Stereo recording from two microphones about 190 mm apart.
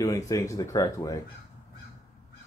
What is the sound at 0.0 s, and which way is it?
Speech, 20° left (ahead or behind).